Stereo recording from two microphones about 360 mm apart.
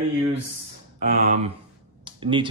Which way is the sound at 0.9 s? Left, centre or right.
Centre.